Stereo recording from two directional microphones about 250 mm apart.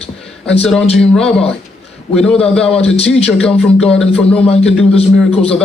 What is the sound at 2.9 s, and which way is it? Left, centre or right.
A man's voice, left.